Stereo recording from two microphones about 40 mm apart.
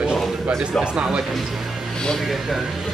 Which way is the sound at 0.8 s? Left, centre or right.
Right.